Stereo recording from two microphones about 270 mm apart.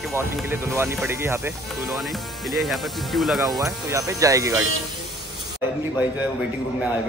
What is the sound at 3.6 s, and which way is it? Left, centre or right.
Speech, centre.